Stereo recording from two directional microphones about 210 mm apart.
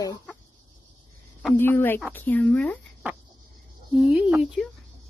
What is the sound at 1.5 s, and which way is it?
Speech, 10° left (ahead or behind).